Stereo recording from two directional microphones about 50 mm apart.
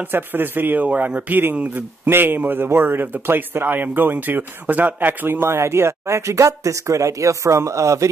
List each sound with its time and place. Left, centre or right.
0.0 s speech: right